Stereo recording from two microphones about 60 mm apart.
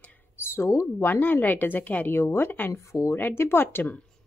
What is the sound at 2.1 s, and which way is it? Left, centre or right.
Speech, left.